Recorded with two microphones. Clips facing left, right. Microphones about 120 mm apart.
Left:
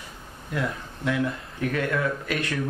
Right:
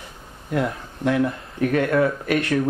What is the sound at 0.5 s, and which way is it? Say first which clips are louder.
Speech: right 5 dB; 45° right (ahead or behind).